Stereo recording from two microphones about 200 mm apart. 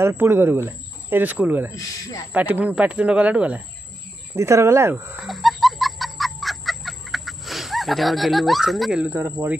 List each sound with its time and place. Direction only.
0.0 s speech: 10° right (ahead or behind)
1.8 s speech: 15° left (ahead or behind)
2.3 s speech: 10° right (ahead or behind)
5.2 s chicken: centre (ahead or behind)